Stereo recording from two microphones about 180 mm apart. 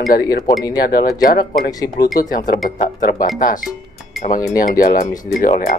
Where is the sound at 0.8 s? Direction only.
55° left (ahead or behind).